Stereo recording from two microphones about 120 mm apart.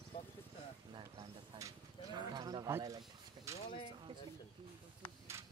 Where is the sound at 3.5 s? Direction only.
25° right (ahead or behind).